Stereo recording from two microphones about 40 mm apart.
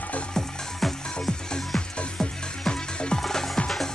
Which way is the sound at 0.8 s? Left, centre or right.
Centre.